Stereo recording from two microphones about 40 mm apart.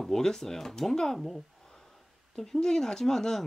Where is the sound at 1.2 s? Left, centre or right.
Centre.